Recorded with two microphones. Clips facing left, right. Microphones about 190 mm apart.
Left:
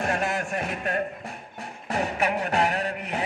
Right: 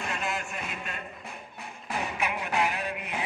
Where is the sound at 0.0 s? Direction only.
50° left (ahead or behind).